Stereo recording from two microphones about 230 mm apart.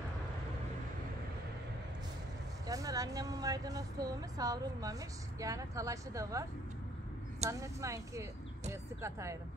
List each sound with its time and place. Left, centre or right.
2.6 s speech: centre
7.4 s speech: centre